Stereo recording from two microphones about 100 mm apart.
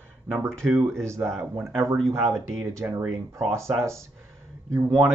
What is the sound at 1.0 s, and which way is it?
Speech, 30° right (ahead or behind).